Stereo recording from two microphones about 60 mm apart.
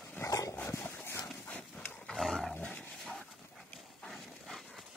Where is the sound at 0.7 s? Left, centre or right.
Left.